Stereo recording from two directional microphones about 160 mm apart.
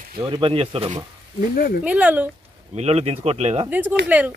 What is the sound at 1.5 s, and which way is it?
Speech, 65° left (ahead or behind).